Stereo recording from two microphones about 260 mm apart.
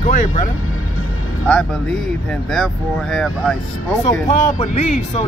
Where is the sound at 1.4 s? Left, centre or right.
Centre.